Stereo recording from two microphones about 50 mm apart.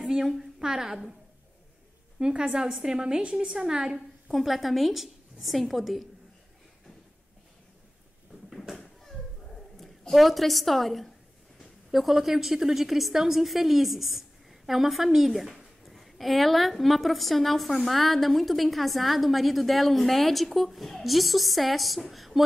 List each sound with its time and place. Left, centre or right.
0.0 s a sound: centre
0.7 s a woman's voice: centre
2.1 s a woman's voice: centre
4.3 s a woman's voice: centre
8.5 s a sound: centre
9.8 s a woman's voice: centre